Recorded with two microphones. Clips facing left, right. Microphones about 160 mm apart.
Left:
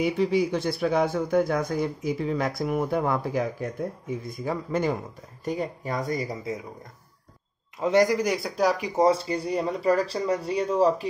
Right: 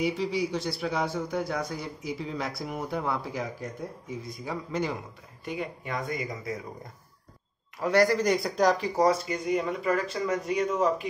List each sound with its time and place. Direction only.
0.0 s speech: 55° left (ahead or behind)
5.4 s speech: 40° left (ahead or behind)
7.8 s speech: 20° left (ahead or behind)
8.9 s speech: 30° left (ahead or behind)